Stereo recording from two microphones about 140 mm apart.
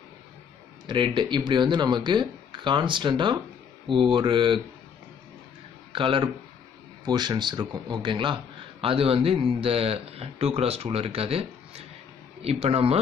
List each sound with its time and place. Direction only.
0.8 s speech: 35° right (ahead or behind)
5.9 s a man's voice: 40° right (ahead or behind)